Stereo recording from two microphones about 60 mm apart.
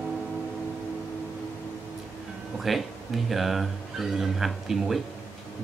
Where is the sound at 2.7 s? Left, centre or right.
Centre.